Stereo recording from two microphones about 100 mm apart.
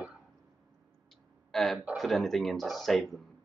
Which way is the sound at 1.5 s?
Centre (ahead or behind).